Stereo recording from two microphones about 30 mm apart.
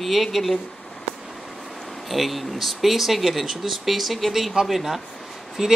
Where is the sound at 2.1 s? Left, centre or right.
Centre.